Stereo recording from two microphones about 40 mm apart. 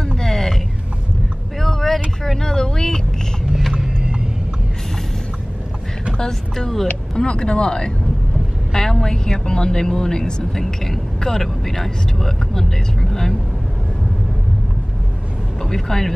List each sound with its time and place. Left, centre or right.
0.2 s vehicle: centre
1.6 s vehicle: centre
2.2 s a sound: centre
3.7 s vehicle: right
6.1 s vehicle: centre
7.2 s speech: left
15.6 s speech: centre